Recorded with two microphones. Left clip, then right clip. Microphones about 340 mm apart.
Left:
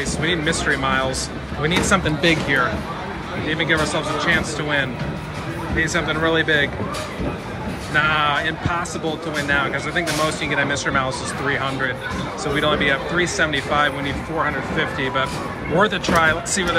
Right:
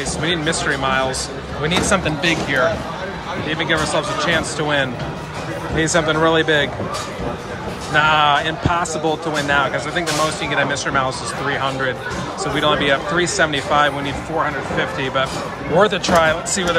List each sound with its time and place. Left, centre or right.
0.2 s speech: centre
7.9 s speech: centre